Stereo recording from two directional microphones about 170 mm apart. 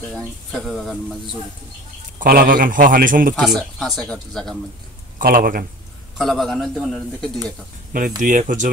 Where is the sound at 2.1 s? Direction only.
55° right (ahead or behind).